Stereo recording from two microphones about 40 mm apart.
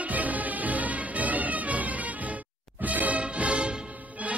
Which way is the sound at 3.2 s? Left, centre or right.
Right.